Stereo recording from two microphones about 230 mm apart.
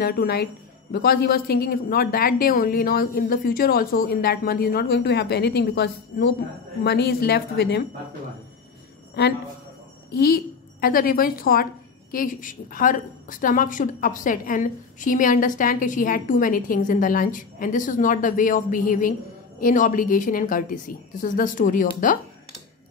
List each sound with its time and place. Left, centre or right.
0.0 s a woman's voice: left
9.2 s a woman's voice: left